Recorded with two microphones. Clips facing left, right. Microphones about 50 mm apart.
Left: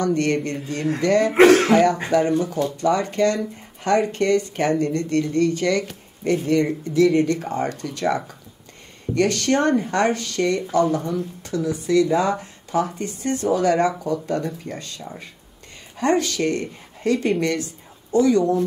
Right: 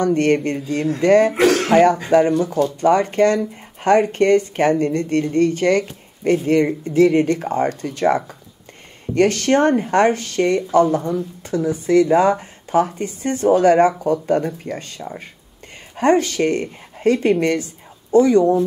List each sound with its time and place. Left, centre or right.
0.0 s speech: right
1.3 s speech: left
1.7 s speech: right